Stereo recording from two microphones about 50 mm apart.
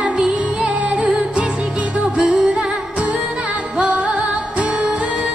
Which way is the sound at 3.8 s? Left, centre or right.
Right.